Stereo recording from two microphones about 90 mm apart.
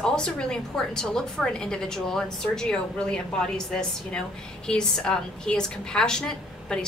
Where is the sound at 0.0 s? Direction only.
10° left (ahead or behind).